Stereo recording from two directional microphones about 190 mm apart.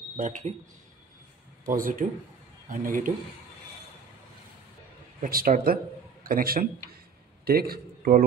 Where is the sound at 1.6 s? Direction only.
45° right (ahead or behind).